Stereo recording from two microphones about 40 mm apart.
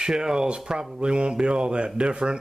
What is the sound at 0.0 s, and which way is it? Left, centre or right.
Speech, centre.